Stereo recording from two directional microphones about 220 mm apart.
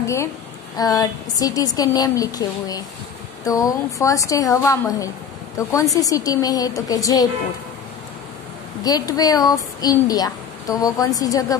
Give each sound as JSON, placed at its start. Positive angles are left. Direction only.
{"t": 0.0, "sound": "a woman's voice", "side_deg": 15}
{"t": 8.8, "sound": "speech", "side_deg": 15}